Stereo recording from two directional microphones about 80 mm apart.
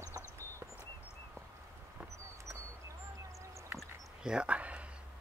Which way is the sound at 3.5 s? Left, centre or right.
Right.